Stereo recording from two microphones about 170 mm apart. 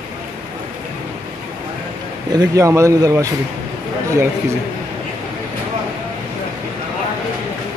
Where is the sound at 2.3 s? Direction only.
20° right (ahead or behind).